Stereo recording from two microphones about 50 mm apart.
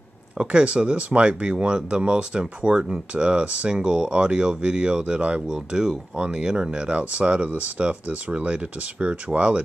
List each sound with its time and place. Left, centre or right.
0.4 s speech: right